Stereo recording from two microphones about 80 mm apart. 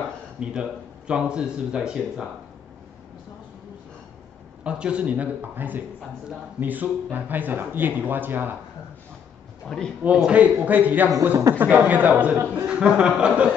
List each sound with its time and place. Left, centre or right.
0.4 s speech: centre
4.6 s speech: centre
9.7 s speech: centre
10.0 s speech: centre